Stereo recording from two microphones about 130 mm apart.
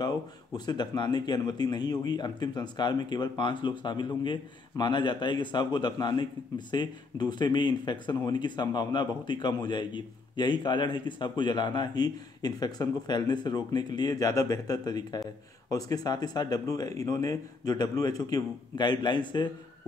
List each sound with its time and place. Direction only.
0.7 s speech: 35° left (ahead or behind)